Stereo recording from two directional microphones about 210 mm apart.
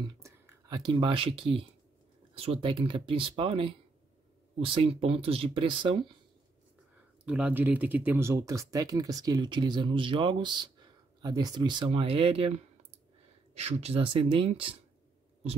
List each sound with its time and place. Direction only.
0.2 s speech: 20° right (ahead or behind)
7.2 s speech: 5° right (ahead or behind); by 14.8 s 25° right (ahead or behind)